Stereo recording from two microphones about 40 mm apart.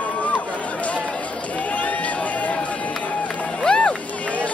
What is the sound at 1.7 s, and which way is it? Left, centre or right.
Run, left.